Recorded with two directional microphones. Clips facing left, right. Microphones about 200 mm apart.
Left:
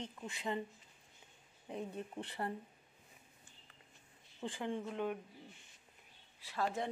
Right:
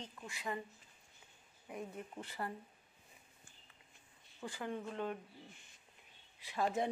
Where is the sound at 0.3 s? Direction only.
25° left (ahead or behind).